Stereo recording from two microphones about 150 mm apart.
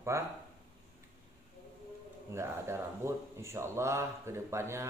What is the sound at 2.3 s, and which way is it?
Speech, 15° right (ahead or behind).